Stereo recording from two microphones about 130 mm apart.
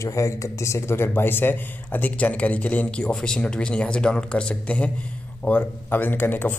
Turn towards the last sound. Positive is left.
turn(degrees=15)  # may be behind; listen again after turning